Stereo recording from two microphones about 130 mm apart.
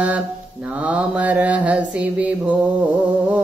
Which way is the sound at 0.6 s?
10° right (ahead or behind).